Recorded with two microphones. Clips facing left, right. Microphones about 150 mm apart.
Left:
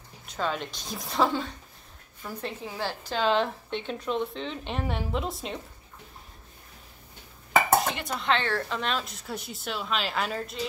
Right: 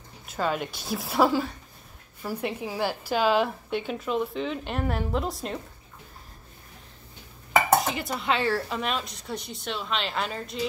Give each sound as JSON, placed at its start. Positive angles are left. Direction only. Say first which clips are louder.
{"t": 0.3, "sound": "a woman's voice", "louder": "right 3 dB", "side_deg": -5}
{"t": 7.8, "sound": "a woman's voice", "louder": "right 1 dB", "side_deg": 0}